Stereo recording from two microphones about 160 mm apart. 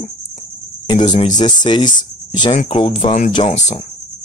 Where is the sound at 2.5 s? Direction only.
40° left (ahead or behind).